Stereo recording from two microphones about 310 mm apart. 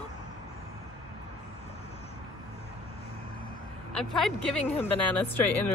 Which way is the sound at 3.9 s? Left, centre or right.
Centre.